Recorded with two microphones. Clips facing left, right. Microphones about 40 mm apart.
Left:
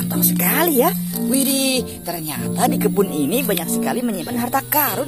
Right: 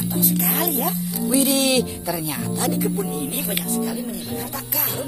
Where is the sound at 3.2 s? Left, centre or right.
Left.